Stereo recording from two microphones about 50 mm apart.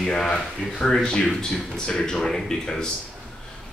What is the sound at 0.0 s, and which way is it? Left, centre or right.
Speech, centre.